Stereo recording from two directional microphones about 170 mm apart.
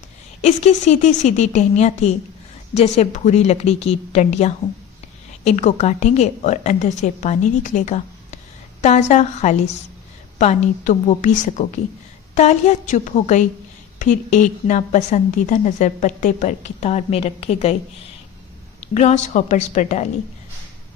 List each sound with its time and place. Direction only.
0.4 s a woman's voice: 40° left (ahead or behind)
18.9 s a woman's voice: 45° left (ahead or behind)